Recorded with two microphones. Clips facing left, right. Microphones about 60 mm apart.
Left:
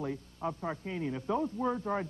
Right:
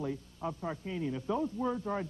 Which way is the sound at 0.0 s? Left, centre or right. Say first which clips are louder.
Left 1 dB; left.